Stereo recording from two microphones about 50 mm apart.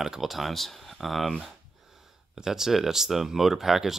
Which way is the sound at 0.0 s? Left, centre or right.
Centre.